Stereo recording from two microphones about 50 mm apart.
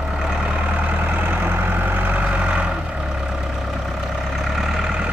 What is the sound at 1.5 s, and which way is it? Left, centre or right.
Vehicle, right.